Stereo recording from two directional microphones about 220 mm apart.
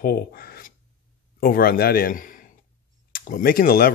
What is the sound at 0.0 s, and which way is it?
A man's voice, 40° left (ahead or behind).